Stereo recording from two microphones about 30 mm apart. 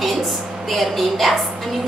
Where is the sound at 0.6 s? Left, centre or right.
Centre.